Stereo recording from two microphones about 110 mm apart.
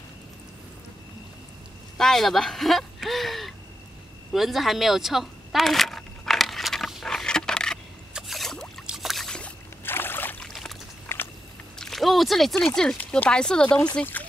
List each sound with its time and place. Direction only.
2.0 s speech: 5° left (ahead or behind)
4.3 s a sound: centre (ahead or behind)
8.1 s rowboat: centre (ahead or behind)
8.8 s boat: 5° right (ahead or behind)
9.8 s rowboat: 20° left (ahead or behind)
10.4 s boat: 5° left (ahead or behind)
11.1 s biting: 20° left (ahead or behind)
11.8 s speech: centre (ahead or behind)